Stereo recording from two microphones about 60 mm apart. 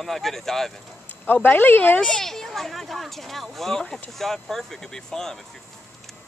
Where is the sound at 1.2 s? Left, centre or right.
Left.